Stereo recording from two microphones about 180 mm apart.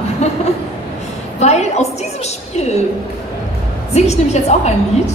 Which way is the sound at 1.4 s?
40° left (ahead or behind).